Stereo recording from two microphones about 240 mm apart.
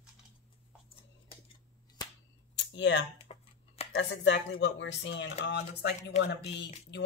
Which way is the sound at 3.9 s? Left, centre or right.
Left.